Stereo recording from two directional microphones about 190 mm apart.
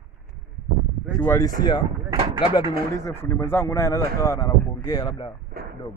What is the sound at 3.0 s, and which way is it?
Speech, 10° left (ahead or behind).